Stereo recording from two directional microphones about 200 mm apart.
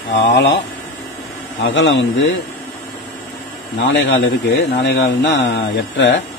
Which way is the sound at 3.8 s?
60° left (ahead or behind).